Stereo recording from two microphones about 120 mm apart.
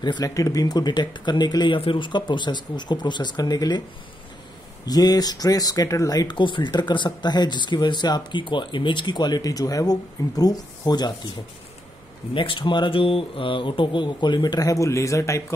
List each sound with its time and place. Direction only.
0.0 s speech: 35° left (ahead or behind)
4.8 s speech: 30° left (ahead or behind)
12.4 s speech: 45° left (ahead or behind); by 15.4 s 25° left (ahead or behind)